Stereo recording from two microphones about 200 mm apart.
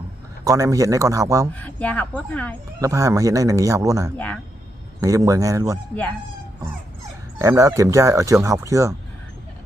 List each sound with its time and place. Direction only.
0.5 s speech: 15° right (ahead or behind)
1.5 s speech: 10° left (ahead or behind)
2.8 s speech: 15° right (ahead or behind)
7.3 s speech: 15° right (ahead or behind)